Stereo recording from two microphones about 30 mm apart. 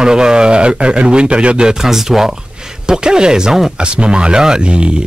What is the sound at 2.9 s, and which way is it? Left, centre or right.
A man's voice, right.